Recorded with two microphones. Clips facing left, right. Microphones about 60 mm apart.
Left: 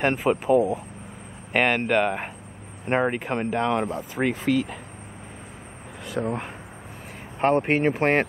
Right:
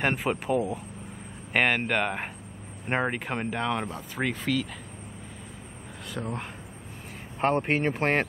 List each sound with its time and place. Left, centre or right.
0.0 s speech: centre; by 4.7 s left
6.2 s speech: left
7.3 s speech: centre